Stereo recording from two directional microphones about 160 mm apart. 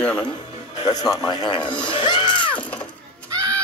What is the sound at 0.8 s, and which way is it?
Speech, 25° left (ahead or behind).